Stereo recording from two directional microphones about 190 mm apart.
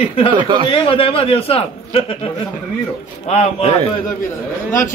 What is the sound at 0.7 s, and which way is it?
A man's voice, 25° left (ahead or behind).